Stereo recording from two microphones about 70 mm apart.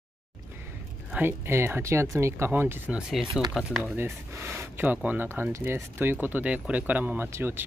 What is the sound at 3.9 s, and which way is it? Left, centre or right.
Speech, right.